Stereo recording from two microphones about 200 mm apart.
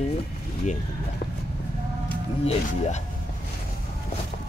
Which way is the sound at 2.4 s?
35° left (ahead or behind).